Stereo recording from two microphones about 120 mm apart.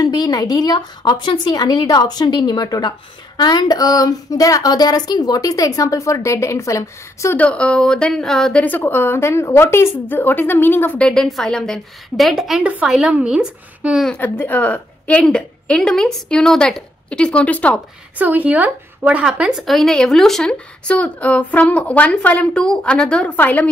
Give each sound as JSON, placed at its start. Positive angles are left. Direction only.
{"t": 0.0, "sound": "a woman's voice", "side_deg": 35}
{"t": 7.3, "sound": "speech", "side_deg": 10}
{"t": 11.1, "sound": "a woman's voice", "side_deg": 5}
{"t": 14.1, "sound": "speech", "side_deg": 15}
{"t": 18.1, "sound": "speech", "side_deg": -15}